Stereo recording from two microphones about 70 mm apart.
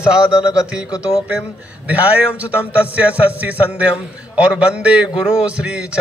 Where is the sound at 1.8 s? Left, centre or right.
Right.